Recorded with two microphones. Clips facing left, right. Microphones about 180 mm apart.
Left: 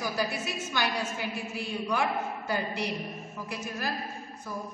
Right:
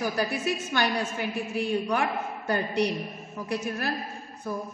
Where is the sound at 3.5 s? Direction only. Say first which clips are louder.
Right 6 dB; 60° right (ahead or behind).